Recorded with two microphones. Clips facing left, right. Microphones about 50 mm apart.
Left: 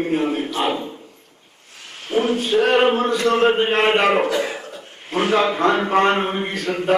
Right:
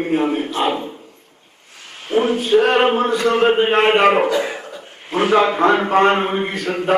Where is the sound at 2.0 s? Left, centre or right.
Centre.